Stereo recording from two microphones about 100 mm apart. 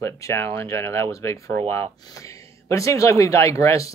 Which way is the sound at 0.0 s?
25° left (ahead or behind).